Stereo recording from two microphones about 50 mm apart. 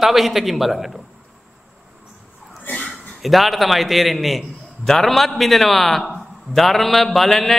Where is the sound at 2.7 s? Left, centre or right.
Left.